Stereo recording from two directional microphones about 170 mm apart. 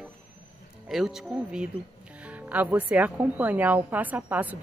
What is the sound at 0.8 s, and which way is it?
A woman's voice, centre (ahead or behind).